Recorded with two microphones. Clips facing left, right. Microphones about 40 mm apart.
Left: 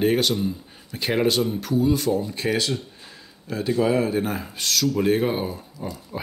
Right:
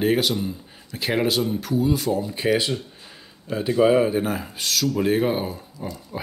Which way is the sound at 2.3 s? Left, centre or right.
Centre.